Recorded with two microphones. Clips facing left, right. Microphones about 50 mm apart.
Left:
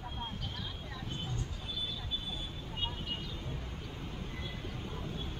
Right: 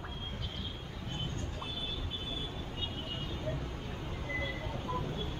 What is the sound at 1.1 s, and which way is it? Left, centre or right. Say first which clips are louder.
Vehicle: right 3 dB; right.